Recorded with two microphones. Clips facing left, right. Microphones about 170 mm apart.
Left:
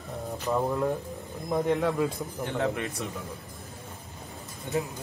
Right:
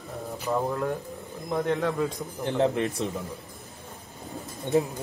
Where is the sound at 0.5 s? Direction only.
5° left (ahead or behind).